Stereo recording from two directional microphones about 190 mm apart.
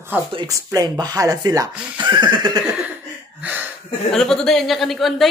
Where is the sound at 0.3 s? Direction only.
20° right (ahead or behind).